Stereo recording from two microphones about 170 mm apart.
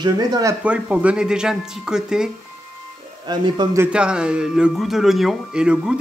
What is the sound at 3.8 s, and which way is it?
A man's voice, 5° right (ahead or behind).